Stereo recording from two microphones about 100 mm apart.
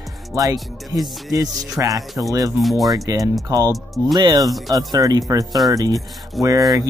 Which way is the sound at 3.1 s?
40° right (ahead or behind).